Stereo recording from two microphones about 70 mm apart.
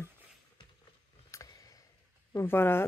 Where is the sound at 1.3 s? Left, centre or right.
Left.